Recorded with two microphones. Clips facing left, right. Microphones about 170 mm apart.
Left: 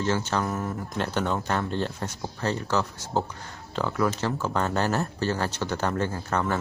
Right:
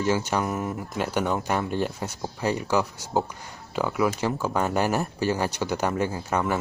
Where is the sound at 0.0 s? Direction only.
10° right (ahead or behind).